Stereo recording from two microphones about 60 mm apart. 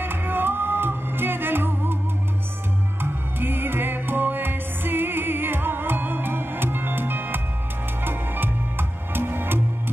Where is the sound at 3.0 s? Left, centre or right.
Right.